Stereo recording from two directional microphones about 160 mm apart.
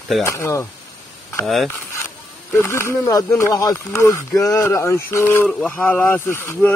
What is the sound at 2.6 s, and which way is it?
Speech, 15° left (ahead or behind).